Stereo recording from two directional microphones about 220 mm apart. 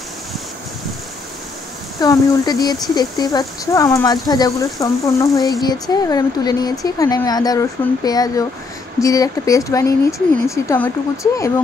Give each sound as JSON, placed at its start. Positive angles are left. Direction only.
{"t": 2.0, "sound": "speech", "side_deg": 15}